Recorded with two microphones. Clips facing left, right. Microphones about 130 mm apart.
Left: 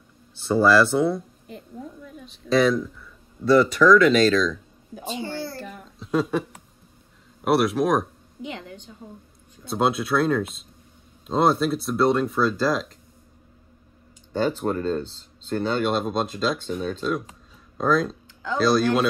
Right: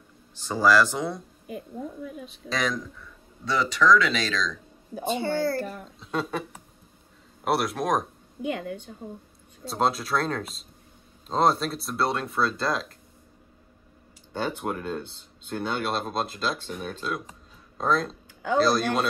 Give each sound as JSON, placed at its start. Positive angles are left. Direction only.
{"t": 0.4, "sound": "speech", "side_deg": 0}
{"t": 2.5, "sound": "speech", "side_deg": 5}
{"t": 4.9, "sound": "a woman's voice", "side_deg": -50}
{"t": 7.4, "sound": "speech", "side_deg": 0}
{"t": 8.4, "sound": "a woman's voice", "side_deg": -55}
{"t": 9.7, "sound": "speech", "side_deg": 0}
{"t": 14.3, "sound": "speech", "side_deg": -10}